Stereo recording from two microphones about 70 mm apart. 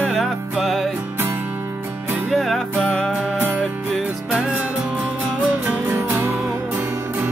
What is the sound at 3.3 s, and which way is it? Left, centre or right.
Music, right.